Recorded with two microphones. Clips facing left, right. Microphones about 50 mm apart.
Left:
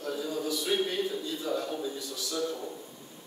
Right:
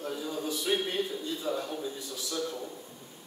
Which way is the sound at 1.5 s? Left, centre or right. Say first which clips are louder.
Left 2 dB; centre.